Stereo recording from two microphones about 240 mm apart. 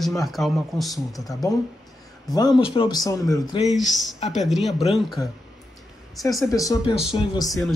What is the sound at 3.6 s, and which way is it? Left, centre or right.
Speech, centre.